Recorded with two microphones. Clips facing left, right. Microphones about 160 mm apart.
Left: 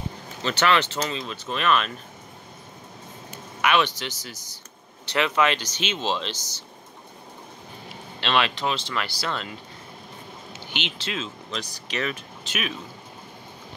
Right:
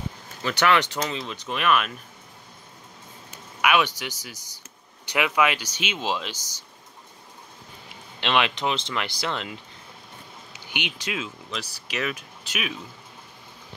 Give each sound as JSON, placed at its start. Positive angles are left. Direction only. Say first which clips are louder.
{"t": 0.6, "sound": "speech", "louder": "even", "side_deg": -15}
{"t": 3.6, "sound": "speech", "louder": "even", "side_deg": -10}
{"t": 8.2, "sound": "speech", "louder": "even", "side_deg": -15}